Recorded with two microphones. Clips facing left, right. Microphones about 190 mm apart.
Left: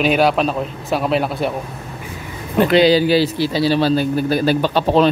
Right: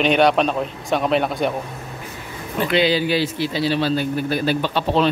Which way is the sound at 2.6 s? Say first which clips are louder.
Left 6 dB; 40° left (ahead or behind).